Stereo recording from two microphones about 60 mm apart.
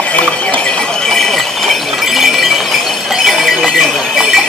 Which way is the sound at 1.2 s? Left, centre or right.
Centre.